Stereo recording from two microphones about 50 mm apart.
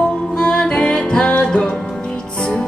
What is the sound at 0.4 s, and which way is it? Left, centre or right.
Music, centre.